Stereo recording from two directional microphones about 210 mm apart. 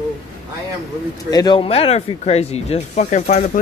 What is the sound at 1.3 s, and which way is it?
Speech, 20° left (ahead or behind).